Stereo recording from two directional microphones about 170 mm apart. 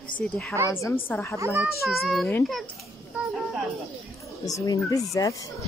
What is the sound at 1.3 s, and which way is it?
Speech, 15° right (ahead or behind).